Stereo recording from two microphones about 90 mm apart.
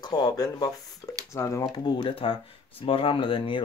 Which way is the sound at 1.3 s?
35° left (ahead or behind).